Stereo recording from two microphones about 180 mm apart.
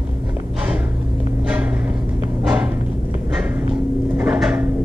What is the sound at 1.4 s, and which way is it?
Music, 10° right (ahead or behind).